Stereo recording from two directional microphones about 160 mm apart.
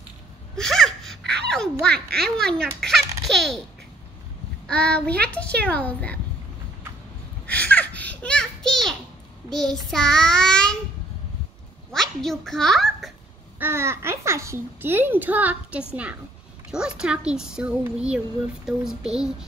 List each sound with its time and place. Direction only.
0.6 s gasp: centre (ahead or behind)
1.2 s a sound: 90° right
1.5 s a child's voice: 5° left (ahead or behind)
2.0 s speech: 80° right
2.3 s speech: 5° left (ahead or behind)
2.8 s baby laughter: centre (ahead or behind)
4.6 s a child's voice: 5° left (ahead or behind)
7.4 s a sound: 10° left (ahead or behind)
9.5 s speech: 5° left (ahead or behind)
11.9 s a child's voice: centre (ahead or behind)
13.6 s a child's voice: 15° right (ahead or behind)